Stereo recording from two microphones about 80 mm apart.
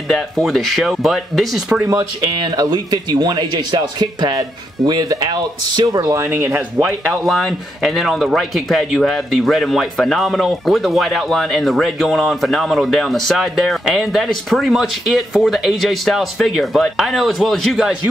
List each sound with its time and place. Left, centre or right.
0.1 s speech: centre
1.9 s speech: right
6.1 s speech: right
7.2 s speech: centre